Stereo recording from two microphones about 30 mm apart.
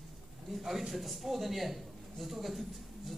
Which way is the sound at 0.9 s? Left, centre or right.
Centre.